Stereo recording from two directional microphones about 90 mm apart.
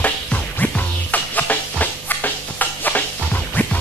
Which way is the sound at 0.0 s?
15° left (ahead or behind).